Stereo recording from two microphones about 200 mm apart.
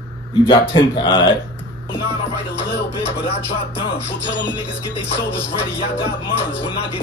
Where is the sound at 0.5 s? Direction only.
25° left (ahead or behind).